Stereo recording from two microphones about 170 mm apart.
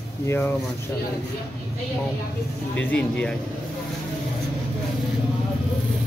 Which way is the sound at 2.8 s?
10° left (ahead or behind).